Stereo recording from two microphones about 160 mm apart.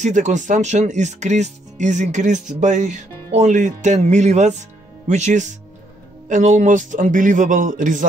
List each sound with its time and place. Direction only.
0.0 s speech: 50° right (ahead or behind)